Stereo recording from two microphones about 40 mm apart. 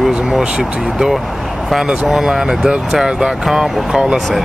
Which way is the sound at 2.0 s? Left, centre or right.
Centre.